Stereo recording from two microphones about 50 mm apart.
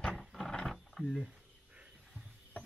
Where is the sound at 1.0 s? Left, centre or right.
Centre.